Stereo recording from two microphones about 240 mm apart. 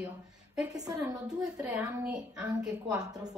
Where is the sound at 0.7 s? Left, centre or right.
Centre.